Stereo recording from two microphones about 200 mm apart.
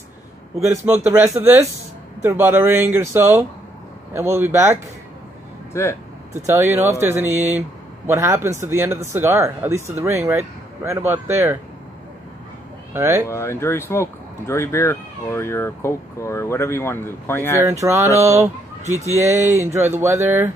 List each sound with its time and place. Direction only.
0.7 s speech: 15° right (ahead or behind)
5.7 s speech: 15° left (ahead or behind)
6.4 s speech: 10° right (ahead or behind)
12.9 s speech: 10° right (ahead or behind)
13.3 s speech: 15° left (ahead or behind)
17.6 s speech: 10° right (ahead or behind)
18.9 s speech: 35° right (ahead or behind)
19.1 s speech: 10° right (ahead or behind)